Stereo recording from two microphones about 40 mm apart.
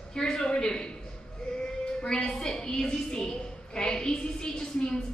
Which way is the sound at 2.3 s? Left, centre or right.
Centre.